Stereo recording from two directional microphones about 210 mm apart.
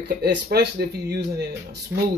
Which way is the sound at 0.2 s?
50° right (ahead or behind).